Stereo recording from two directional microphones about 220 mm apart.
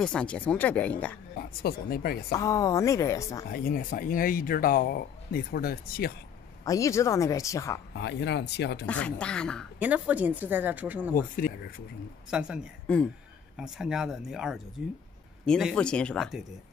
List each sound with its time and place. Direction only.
0.0 s speech: 5° left (ahead or behind)
1.6 s speech: 45° left (ahead or behind)
2.3 s speech: 15° left (ahead or behind)
3.4 s speech: 40° left (ahead or behind)
6.6 s speech: 15° left (ahead or behind)
7.9 s speech: 50° left (ahead or behind)
8.8 s speech: 5° left (ahead or behind)
11.3 s speech: 40° left (ahead or behind)
12.3 s speech: 5° right (ahead or behind)